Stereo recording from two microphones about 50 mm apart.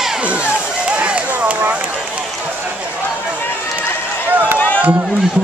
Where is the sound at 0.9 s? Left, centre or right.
Right.